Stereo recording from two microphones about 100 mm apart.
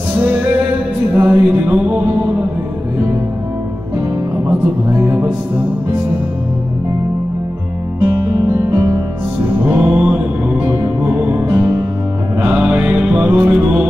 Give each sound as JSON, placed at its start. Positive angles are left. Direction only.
{"t": 0.2, "sound": "music", "side_deg": -20}
{"t": 5.0, "sound": "music", "side_deg": -15}
{"t": 8.0, "sound": "music", "side_deg": -20}
{"t": 8.7, "sound": "music", "side_deg": -35}
{"t": 9.6, "sound": "music", "side_deg": -20}
{"t": 12.4, "sound": "mantra", "side_deg": -15}